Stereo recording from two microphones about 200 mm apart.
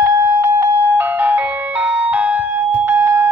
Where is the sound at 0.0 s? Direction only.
15° right (ahead or behind).